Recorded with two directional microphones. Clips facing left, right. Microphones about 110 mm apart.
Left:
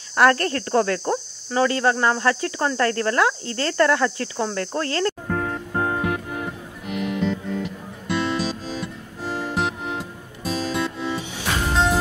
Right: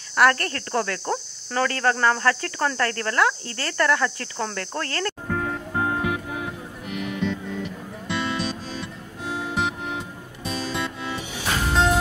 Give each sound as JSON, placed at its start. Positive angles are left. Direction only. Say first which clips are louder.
{"t": 0.1, "sound": "cricket", "louder": "left 2 dB", "side_deg": 25}
{"t": 1.0, "sound": "cricket", "louder": "left 3 dB", "side_deg": 15}
{"t": 5.3, "sound": "music", "louder": "left 1 dB", "side_deg": 0}